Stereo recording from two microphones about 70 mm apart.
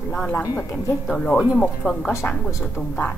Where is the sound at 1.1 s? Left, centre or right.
Centre.